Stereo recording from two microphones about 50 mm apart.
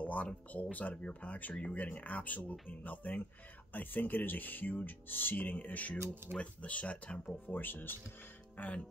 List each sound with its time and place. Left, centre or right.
0.0 s a sound: left
0.5 s speech: left
7.4 s speech: left